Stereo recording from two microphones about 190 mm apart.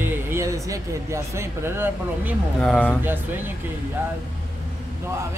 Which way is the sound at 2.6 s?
5° left (ahead or behind).